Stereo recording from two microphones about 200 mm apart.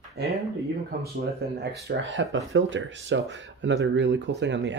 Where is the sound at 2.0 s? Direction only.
65° right (ahead or behind).